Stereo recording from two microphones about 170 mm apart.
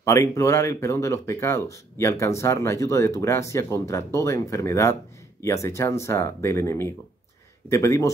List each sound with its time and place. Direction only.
0.0 s speech: 15° left (ahead or behind)